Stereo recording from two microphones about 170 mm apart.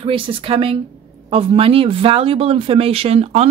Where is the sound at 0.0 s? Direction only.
30° right (ahead or behind).